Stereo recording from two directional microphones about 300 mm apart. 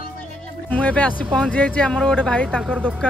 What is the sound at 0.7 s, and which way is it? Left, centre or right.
Speech, centre.